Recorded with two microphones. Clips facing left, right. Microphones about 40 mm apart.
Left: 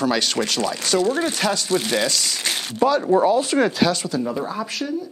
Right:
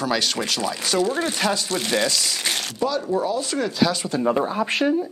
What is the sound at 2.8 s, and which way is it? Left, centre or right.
Speech, left.